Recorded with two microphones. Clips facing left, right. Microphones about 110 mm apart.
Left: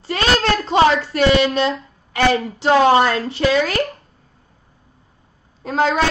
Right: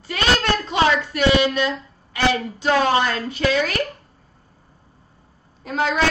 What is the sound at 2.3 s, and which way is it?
A woman's voice, 25° left (ahead or behind).